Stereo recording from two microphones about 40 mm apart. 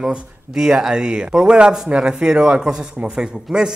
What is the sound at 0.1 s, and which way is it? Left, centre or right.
A man's voice, centre.